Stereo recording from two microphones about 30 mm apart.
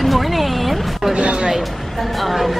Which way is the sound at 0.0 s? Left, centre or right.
Centre.